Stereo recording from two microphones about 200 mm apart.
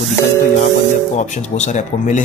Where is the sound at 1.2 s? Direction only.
35° left (ahead or behind).